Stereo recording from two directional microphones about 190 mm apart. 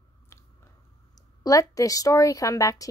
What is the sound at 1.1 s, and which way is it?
A woman's voice, 20° left (ahead or behind).